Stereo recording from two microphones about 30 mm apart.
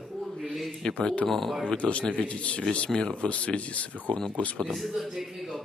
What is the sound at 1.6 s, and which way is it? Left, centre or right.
Speech, left.